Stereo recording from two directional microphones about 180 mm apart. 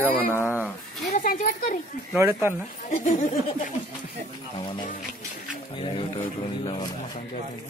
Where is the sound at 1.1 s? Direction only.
50° left (ahead or behind).